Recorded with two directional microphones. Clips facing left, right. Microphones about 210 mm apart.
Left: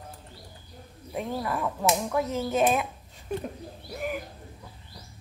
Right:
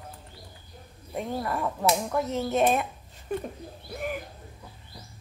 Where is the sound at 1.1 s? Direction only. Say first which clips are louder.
Even; centre (ahead or behind).